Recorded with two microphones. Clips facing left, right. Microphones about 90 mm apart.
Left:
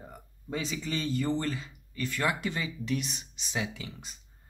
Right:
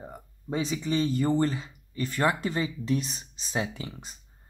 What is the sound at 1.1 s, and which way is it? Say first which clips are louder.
Speech: right 5 dB; 35° right (ahead or behind).